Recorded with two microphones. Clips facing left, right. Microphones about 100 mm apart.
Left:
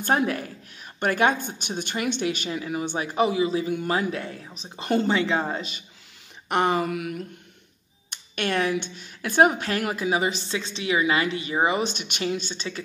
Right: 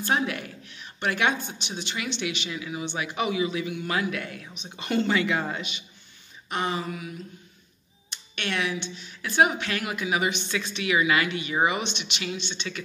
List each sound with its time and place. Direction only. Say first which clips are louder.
0.0 s a woman's voice: left 3 dB; 45° left (ahead or behind)
6.5 s a sound: left 6 dB; 60° left (ahead or behind)
8.1 s a woman's voice: left 5 dB; 45° left (ahead or behind)